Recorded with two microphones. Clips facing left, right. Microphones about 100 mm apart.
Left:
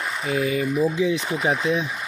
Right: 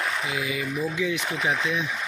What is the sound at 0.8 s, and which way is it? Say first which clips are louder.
Speech: left 5 dB; 30° left (ahead or behind).